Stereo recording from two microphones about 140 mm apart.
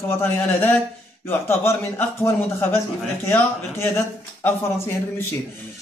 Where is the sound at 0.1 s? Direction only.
15° left (ahead or behind).